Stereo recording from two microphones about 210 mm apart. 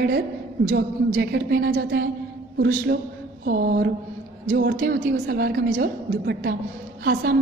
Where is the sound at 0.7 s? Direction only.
45° right (ahead or behind).